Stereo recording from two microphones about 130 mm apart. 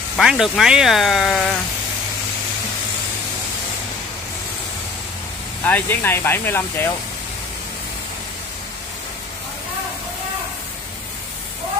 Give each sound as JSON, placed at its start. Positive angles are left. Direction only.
{"t": 0.2, "sound": "speech", "side_deg": -5}
{"t": 5.6, "sound": "speech", "side_deg": 15}